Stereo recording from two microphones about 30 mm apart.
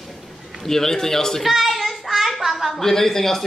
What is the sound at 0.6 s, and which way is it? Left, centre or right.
Speech, centre.